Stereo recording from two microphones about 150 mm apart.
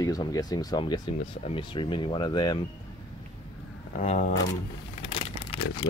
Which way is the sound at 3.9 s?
55° left (ahead or behind).